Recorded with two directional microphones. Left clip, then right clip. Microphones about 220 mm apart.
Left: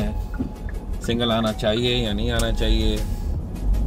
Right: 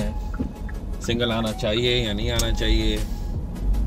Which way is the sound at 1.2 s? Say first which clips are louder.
Left 3 dB; 20° left (ahead or behind).